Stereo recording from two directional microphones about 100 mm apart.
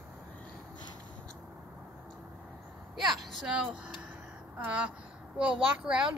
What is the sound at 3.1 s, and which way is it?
Speech, centre (ahead or behind).